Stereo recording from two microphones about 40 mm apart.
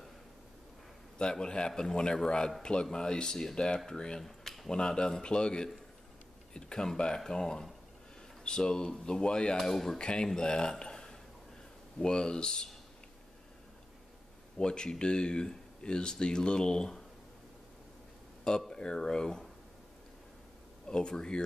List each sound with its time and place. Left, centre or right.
1.1 s a man's voice: centre
9.6 s speech: centre
9.9 s speech: left
14.6 s speech: left
18.7 s speech: centre
20.8 s speech: left